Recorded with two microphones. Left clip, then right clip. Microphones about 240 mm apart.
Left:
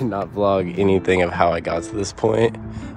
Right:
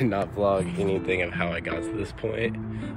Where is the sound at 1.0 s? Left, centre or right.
Left.